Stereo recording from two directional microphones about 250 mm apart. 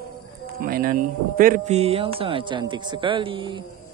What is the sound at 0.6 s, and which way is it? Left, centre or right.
Speech, right.